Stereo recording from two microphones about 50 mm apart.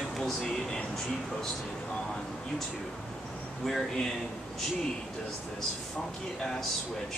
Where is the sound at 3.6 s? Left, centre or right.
Centre.